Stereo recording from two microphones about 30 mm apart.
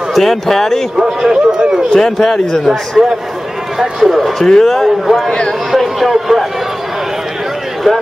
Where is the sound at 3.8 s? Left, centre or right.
Centre.